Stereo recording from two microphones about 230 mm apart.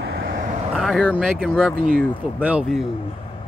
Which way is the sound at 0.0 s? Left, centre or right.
Right.